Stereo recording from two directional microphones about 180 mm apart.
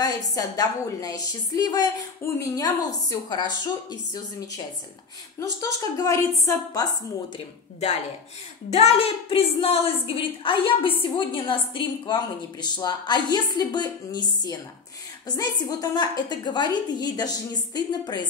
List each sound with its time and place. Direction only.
0.0 s a woman's voice: 20° left (ahead or behind)
8.6 s a woman's voice: 35° left (ahead or behind)